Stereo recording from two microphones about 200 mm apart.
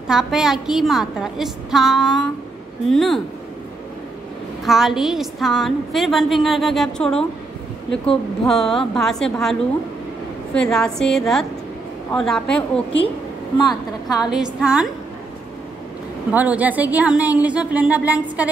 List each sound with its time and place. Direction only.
0.1 s a woman's voice: 5° right (ahead or behind)
4.6 s a woman's voice: centre (ahead or behind)
13.6 s a woman's voice: 20° left (ahead or behind)
14.1 s a woman's voice: 5° right (ahead or behind)
16.3 s a woman's voice: 5° right (ahead or behind)